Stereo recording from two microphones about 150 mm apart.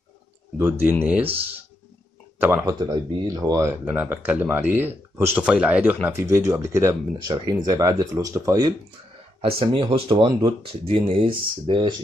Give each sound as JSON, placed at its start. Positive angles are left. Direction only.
{"t": 0.6, "sound": "speech", "side_deg": -15}
{"t": 2.3, "sound": "a sound", "side_deg": -15}
{"t": 2.6, "sound": "speech", "side_deg": -25}
{"t": 9.4, "sound": "speech", "side_deg": -35}